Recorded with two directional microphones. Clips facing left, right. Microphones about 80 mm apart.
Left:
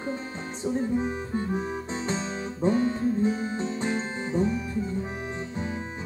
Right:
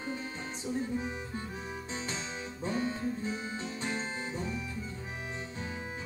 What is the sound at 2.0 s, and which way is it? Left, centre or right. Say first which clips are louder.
Music: left 8 dB; left.